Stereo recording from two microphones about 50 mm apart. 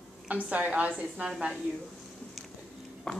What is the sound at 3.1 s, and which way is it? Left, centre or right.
Speech, centre.